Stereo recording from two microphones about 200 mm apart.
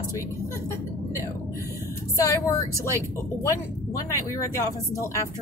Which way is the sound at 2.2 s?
15° left (ahead or behind).